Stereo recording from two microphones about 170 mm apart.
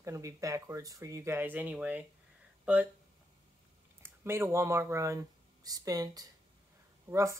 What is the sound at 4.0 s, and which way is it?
Speech, 15° right (ahead or behind).